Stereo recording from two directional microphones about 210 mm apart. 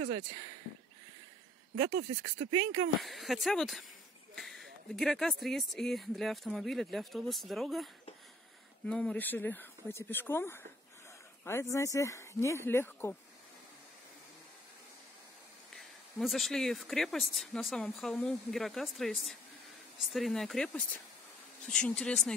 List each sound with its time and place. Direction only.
1.8 s speech: 80° right
2.5 s speech: 90° right
3.0 s speech: centre (ahead or behind)
4.4 s a sound: centre (ahead or behind)
4.9 s speech: centre (ahead or behind)
16.2 s speech: centre (ahead or behind)